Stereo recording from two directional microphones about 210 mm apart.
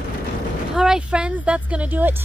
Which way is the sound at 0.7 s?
5° right (ahead or behind).